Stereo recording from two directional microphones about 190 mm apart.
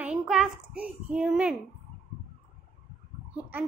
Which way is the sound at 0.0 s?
5° right (ahead or behind).